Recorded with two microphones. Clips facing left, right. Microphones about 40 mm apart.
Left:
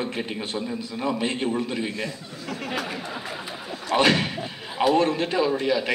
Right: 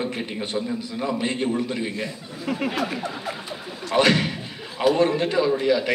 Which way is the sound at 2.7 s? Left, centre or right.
Centre.